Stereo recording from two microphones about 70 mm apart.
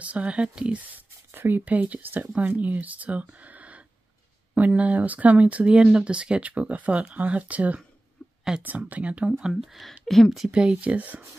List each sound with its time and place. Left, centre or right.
0.0 s speech: centre
8.2 s a sound: centre
8.6 s speech: right
9.4 s speech: centre
10.5 s speech: centre